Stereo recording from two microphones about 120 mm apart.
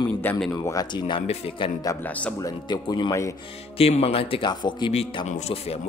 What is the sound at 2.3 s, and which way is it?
Speech, 30° left (ahead or behind).